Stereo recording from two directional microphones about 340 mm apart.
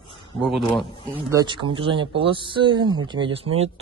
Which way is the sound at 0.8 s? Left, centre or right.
Centre.